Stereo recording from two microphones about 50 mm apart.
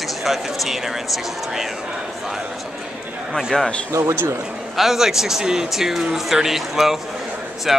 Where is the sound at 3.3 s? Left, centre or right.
Centre.